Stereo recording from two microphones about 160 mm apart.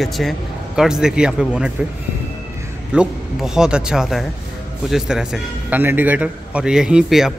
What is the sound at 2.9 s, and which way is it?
A man's voice, 5° right (ahead or behind).